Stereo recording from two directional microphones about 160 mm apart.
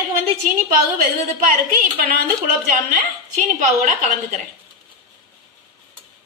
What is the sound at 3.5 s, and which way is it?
Speech, 60° right (ahead or behind).